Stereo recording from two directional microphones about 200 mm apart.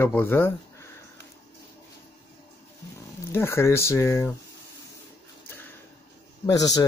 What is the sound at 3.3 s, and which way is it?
Speech, 10° left (ahead or behind).